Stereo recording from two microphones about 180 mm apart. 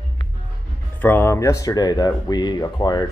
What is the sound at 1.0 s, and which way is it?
Speech, 10° left (ahead or behind).